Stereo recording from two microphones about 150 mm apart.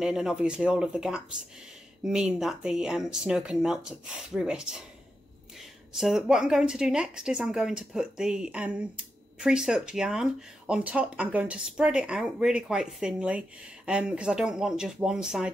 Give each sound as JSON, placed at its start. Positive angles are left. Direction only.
{"t": 0.0, "sound": "a woman's voice", "side_deg": -5}